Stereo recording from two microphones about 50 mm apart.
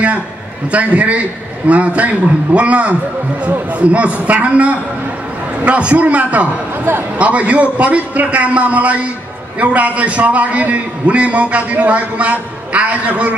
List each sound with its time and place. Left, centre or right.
0.7 s a man's voice: right
6.8 s a man's voice: right
7.2 s a man's voice: right